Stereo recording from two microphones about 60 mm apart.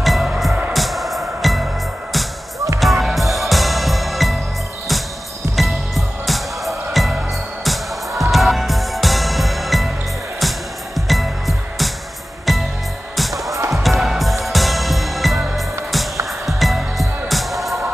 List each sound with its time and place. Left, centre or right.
0.0 s music: centre
2.8 s music: centre
5.6 s music: centre
11.0 s music: centre
13.3 s music: right
13.8 s music: centre